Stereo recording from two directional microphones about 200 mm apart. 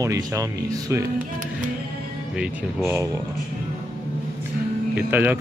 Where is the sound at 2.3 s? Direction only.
10° right (ahead or behind).